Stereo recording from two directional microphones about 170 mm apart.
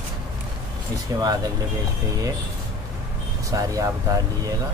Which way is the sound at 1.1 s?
20° right (ahead or behind).